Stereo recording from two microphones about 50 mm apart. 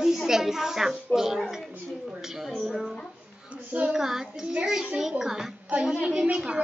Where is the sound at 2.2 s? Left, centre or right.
Centre.